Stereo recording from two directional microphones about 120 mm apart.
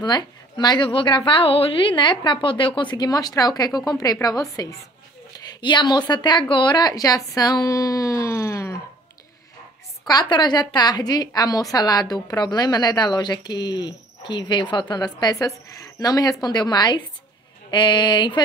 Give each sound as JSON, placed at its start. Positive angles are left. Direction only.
{"t": 0.0, "sound": "a woman's voice", "side_deg": 35}
{"t": 10.0, "sound": "a woman's voice", "side_deg": 35}